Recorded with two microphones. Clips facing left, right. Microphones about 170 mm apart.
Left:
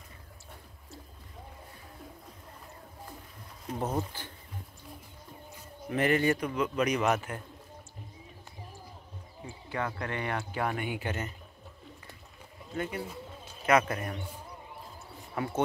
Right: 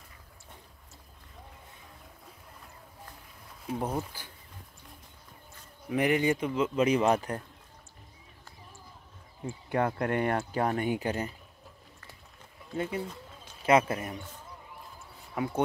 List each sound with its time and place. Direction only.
3.6 s speech: 5° right (ahead or behind)
5.9 s a man's voice: 15° right (ahead or behind); by 7.4 s 35° right (ahead or behind)
9.5 s speech: 50° right (ahead or behind); by 11.2 s 35° right (ahead or behind)
12.7 s a man's voice: 25° right (ahead or behind)
15.3 s speech: 10° right (ahead or behind)